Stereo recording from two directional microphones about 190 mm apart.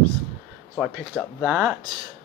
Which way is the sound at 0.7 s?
Centre (ahead or behind).